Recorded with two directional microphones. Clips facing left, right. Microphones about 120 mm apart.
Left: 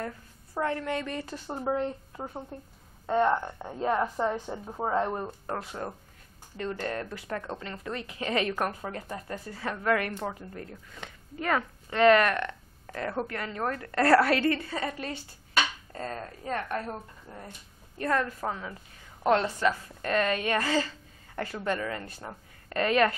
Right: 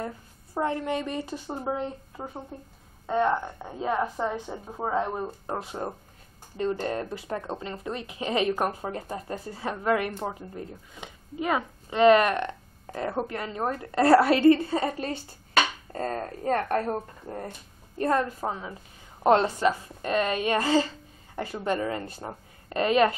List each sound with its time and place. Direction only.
0.0 s a woman's voice: 20° right (ahead or behind); by 5.2 s 5° right (ahead or behind)
5.5 s a woman's voice: 20° right (ahead or behind)
15.5 s speech: 45° right (ahead or behind)
17.9 s a woman's voice: 30° right (ahead or behind)